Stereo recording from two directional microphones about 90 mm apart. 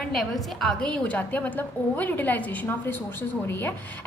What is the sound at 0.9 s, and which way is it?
A woman's voice, 15° left (ahead or behind).